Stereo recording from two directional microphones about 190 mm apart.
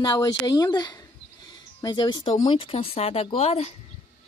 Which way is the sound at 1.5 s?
20° left (ahead or behind).